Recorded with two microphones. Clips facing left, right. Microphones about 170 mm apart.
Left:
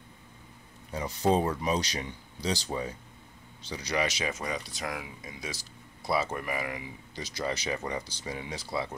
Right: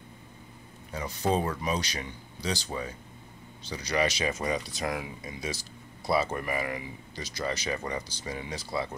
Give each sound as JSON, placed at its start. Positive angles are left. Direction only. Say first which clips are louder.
{"t": 0.9, "sound": "speech", "louder": "left 2 dB", "side_deg": 20}
{"t": 3.7, "sound": "speech", "louder": "right 2 dB", "side_deg": 10}